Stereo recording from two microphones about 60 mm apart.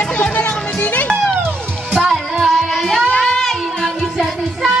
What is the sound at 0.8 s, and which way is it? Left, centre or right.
Music, left.